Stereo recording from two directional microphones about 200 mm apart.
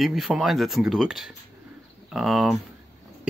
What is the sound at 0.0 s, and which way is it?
Speech, centre (ahead or behind).